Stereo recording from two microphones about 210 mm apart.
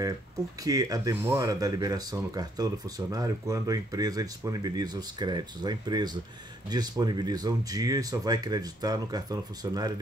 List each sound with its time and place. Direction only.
0.7 s speech: 15° right (ahead or behind)